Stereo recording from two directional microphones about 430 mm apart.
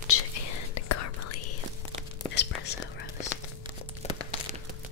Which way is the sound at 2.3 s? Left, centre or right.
Left.